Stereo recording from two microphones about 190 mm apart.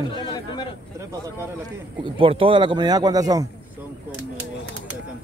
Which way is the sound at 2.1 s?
30° right (ahead or behind).